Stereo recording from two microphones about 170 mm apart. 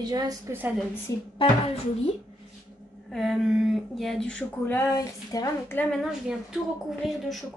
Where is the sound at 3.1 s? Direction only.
Centre (ahead or behind).